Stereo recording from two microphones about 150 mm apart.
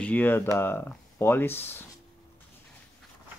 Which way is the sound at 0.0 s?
10° left (ahead or behind).